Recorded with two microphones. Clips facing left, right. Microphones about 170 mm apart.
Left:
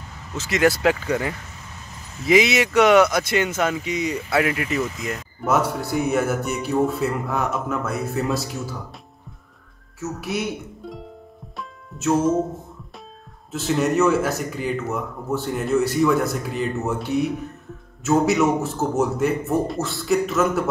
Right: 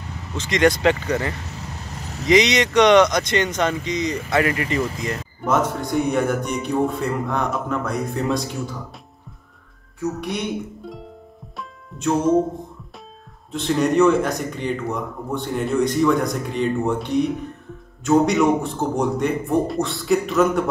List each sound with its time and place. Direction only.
0.3 s a man's voice: 5° left (ahead or behind)
1.5 s vehicle: 75° right (ahead or behind)
2.2 s a man's voice: 5° left (ahead or behind)
9.9 s speech: 5° left (ahead or behind)
11.5 s music: 5° left (ahead or behind)
13.5 s a man's voice: 5° left (ahead or behind)